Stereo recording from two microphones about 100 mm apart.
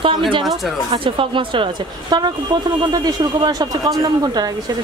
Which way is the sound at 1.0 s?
60° right (ahead or behind).